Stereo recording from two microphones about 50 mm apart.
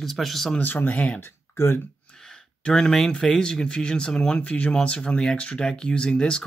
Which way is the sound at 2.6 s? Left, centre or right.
Centre.